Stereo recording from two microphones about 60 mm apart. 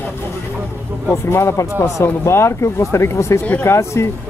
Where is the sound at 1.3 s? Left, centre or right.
Left.